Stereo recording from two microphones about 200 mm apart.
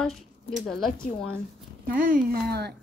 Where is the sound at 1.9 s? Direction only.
45° right (ahead or behind).